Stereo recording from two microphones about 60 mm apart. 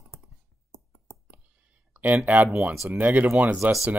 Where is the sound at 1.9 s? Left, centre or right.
Right.